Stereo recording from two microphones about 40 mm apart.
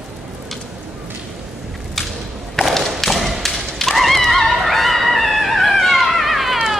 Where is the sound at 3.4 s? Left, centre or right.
Centre.